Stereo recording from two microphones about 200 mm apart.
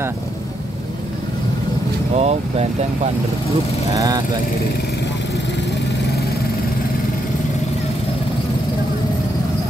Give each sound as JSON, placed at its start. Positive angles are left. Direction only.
{"t": 2.1, "sound": "speech", "side_deg": -30}
{"t": 3.9, "sound": "speech", "side_deg": -15}